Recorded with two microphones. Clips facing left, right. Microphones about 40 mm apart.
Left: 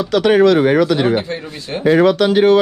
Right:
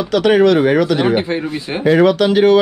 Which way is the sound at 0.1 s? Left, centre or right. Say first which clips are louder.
Even; right.